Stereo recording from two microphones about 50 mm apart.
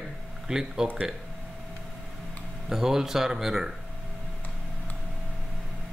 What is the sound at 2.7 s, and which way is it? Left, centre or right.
Speech, centre.